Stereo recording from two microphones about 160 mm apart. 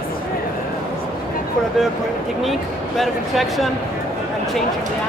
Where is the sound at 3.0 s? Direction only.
Centre (ahead or behind).